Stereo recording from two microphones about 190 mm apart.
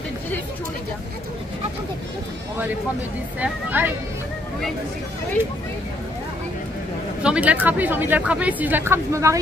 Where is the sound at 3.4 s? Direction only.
10° right (ahead or behind).